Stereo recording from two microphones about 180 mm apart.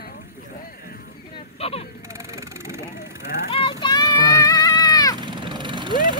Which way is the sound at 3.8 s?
25° left (ahead or behind).